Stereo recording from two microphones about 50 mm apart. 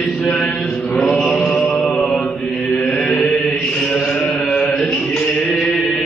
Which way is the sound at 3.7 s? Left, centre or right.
Centre.